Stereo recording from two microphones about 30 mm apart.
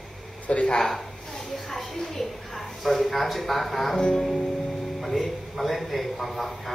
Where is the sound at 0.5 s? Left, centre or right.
Left.